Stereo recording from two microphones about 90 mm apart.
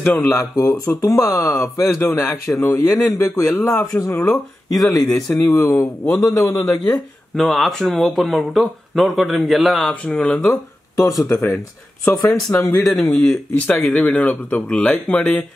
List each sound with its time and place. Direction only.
0.0 s speech: 20° left (ahead or behind)
0.4 s speech: 35° left (ahead or behind)
3.3 s speech: 25° left (ahead or behind)
6.7 s speech: 5° left (ahead or behind)
10.5 s speech: 35° left (ahead or behind)
11.2 s speech: 25° left (ahead or behind)
12.0 s speech: 40° left (ahead or behind)
13.0 s speech: 5° left (ahead or behind)